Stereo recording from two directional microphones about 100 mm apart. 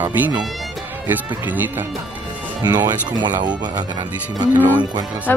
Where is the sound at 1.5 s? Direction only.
20° right (ahead or behind).